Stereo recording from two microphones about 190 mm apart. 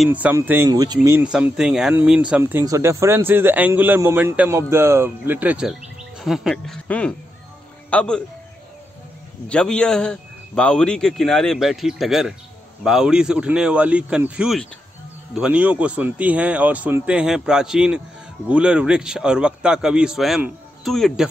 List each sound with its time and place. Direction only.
0.0 s speech: 10° right (ahead or behind)
1.0 s speech: 10° right (ahead or behind)
9.5 s a man's voice: 5° left (ahead or behind)